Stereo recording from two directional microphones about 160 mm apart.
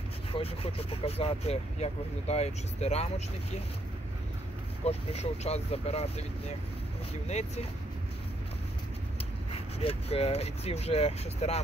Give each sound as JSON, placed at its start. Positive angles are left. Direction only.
{"t": 0.3, "sound": "speech", "side_deg": 35}
{"t": 4.8, "sound": "speech", "side_deg": 40}
{"t": 7.2, "sound": "speech", "side_deg": 45}
{"t": 9.5, "sound": "speech", "side_deg": 40}